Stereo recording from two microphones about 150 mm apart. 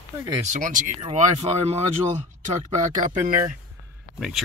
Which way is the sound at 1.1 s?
45° right (ahead or behind).